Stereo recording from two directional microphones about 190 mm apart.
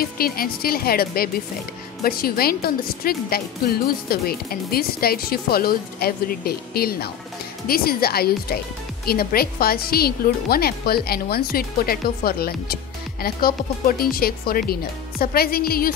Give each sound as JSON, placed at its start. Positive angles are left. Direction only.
{"t": 0.0, "sound": "a woman's voice", "side_deg": 50}